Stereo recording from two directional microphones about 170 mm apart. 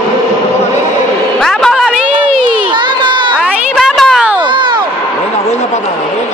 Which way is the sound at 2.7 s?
25° right (ahead or behind).